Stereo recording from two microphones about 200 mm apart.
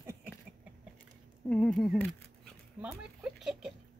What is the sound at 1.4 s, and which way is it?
Speech, 5° left (ahead or behind).